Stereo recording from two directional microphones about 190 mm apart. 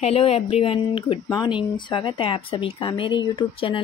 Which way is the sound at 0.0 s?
30° left (ahead or behind).